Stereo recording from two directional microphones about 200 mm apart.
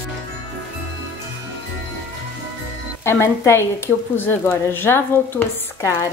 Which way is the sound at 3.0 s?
15° left (ahead or behind).